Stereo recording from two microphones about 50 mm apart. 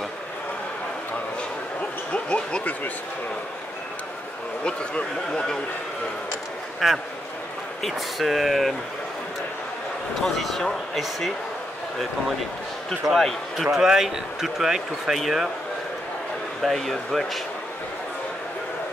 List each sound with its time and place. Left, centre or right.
2.1 s a sound: left
4.6 s speech: left
6.8 s speech: centre
10.2 s speech: centre
13.0 s speech: centre
13.7 s speech: centre
16.6 s speech: centre